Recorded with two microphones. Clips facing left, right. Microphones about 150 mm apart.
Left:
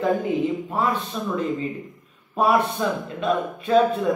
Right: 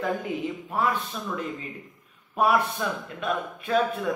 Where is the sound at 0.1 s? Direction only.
25° left (ahead or behind).